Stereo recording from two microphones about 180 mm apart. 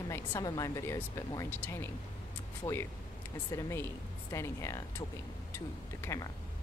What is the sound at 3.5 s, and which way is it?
Speech, 15° left (ahead or behind).